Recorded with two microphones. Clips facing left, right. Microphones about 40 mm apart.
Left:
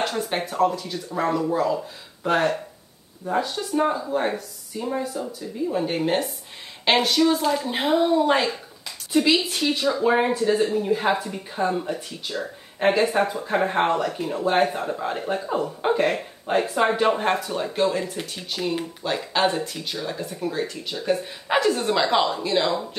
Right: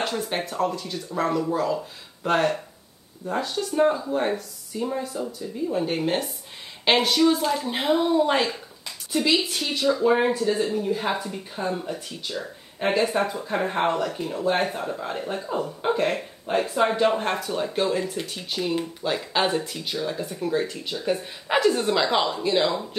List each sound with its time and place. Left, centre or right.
0.0 s speech: centre
9.1 s speech: centre
17.1 s speech: centre
18.6 s speech: centre